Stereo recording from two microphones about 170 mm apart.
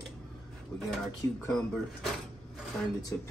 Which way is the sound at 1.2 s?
15° left (ahead or behind).